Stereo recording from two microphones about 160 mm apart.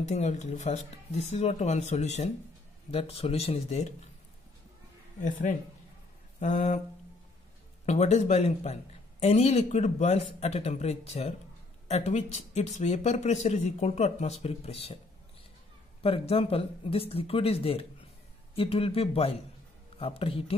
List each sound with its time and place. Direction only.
0.1 s speech: 45° left (ahead or behind)
5.2 s speech: 55° left (ahead or behind)
7.8 s speech: 45° left (ahead or behind)
16.0 s speech: 35° left (ahead or behind)